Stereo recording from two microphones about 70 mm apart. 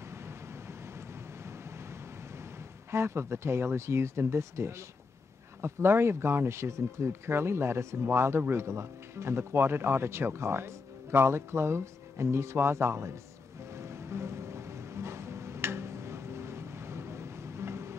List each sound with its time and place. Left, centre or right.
0.1 s vehicle: right
2.9 s speech: right
13.7 s music: right